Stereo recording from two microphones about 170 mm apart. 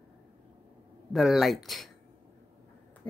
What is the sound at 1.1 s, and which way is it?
Speech, centre (ahead or behind).